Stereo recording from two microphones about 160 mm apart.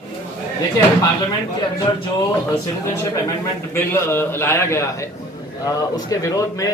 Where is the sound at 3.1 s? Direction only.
20° left (ahead or behind).